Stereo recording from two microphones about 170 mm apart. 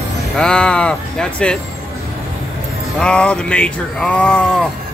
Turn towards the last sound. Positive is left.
turn(degrees=5)  # may be behind; listen again after turning